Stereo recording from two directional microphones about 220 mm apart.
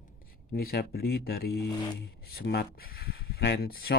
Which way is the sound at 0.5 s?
45° left (ahead or behind).